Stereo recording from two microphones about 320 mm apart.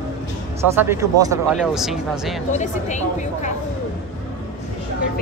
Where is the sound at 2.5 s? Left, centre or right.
Left.